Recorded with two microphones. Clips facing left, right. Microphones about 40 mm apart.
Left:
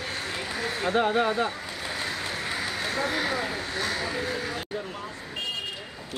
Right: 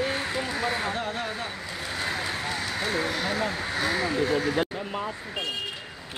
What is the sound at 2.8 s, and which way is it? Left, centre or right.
Speech, centre.